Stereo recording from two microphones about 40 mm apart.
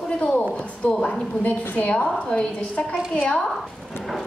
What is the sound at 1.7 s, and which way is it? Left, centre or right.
Speech, left.